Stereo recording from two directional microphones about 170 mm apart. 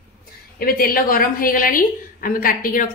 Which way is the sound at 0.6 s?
55° left (ahead or behind).